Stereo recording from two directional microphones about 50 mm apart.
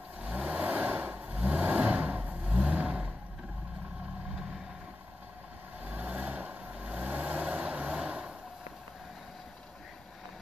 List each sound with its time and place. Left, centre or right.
0.2 s vehicle: right
5.9 s vehicle: right